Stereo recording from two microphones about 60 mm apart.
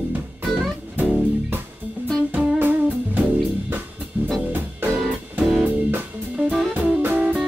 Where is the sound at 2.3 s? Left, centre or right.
Right.